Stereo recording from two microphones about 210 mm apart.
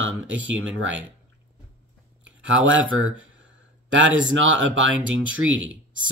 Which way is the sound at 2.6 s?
70° right (ahead or behind).